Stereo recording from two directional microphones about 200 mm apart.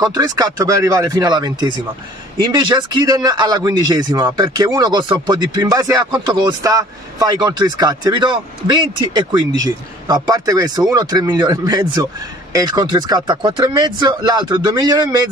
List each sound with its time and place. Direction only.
0.0 s speech: 20° right (ahead or behind)